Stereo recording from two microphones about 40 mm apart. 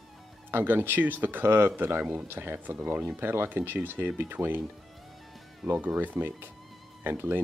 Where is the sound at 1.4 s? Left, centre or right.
Right.